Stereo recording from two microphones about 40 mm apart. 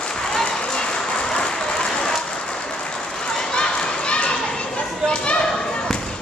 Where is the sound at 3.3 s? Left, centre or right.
Centre.